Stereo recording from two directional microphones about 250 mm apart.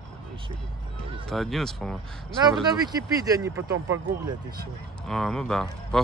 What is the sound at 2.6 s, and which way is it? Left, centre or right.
Speech, centre.